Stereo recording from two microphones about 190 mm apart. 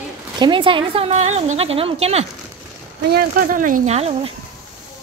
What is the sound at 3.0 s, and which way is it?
Speech, 50° right (ahead or behind).